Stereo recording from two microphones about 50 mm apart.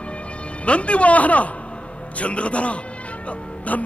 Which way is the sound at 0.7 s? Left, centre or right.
Left.